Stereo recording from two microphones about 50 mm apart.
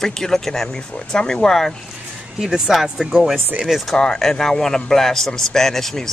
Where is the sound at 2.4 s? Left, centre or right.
Centre.